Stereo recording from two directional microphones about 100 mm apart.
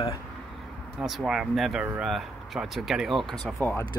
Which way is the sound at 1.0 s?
5° right (ahead or behind).